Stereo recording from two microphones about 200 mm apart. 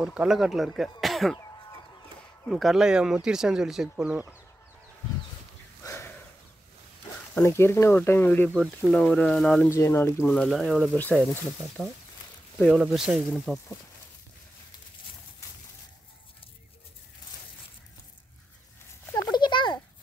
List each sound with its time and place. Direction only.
0.0 s speech: 5° right (ahead or behind)
2.4 s speech: centre (ahead or behind)
5.9 s a sound: 15° left (ahead or behind)
7.4 s speech: 10° left (ahead or behind)
9.7 s speech: 15° left (ahead or behind)
12.5 s speech: centre (ahead or behind)
19.3 s a sound: 20° left (ahead or behind)